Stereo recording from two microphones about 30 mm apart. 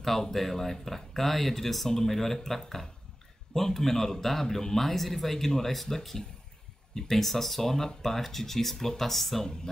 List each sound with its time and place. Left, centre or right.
0.2 s speech: centre